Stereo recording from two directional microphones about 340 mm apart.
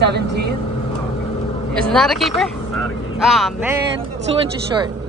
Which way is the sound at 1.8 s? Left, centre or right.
Centre.